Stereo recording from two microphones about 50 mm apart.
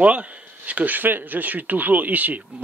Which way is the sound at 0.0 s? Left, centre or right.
Right.